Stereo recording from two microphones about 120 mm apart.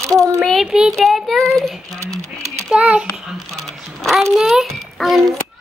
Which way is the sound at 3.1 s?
Centre (ahead or behind).